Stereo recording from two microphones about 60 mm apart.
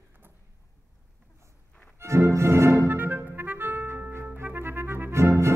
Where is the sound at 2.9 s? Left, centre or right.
Right.